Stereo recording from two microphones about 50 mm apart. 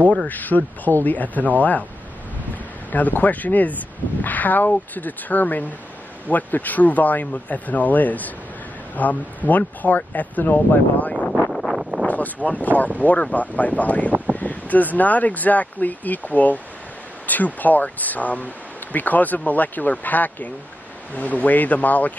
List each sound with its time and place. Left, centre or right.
0.3 s speech: left
2.9 s speech: left
11.5 s wind noise: centre
12.1 s speech: left